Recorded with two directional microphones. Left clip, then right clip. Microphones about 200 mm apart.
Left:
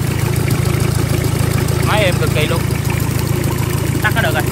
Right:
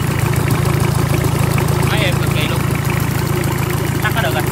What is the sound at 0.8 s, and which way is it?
Vehicle, 30° right (ahead or behind).